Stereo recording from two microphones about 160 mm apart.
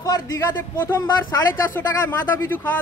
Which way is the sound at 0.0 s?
20° left (ahead or behind).